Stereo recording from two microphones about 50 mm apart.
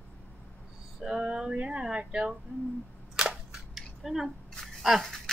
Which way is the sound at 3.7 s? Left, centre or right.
Centre.